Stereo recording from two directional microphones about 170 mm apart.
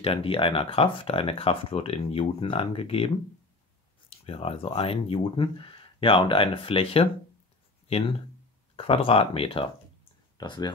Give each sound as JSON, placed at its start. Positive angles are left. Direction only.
{"t": 0.0, "sound": "speech", "side_deg": 35}
{"t": 4.3, "sound": "speech", "side_deg": 35}